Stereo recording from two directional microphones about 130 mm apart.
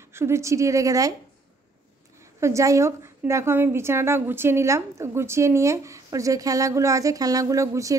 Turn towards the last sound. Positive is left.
turn(degrees=-25)  # may be behind; listen again after turning